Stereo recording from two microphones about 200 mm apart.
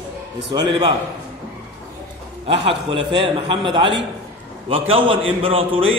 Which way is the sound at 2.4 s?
25° right (ahead or behind).